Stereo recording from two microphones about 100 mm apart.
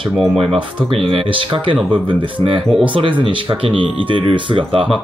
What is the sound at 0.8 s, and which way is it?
Speech, 65° right (ahead or behind).